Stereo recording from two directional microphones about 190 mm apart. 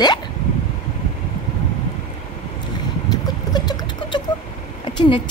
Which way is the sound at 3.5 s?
25° left (ahead or behind).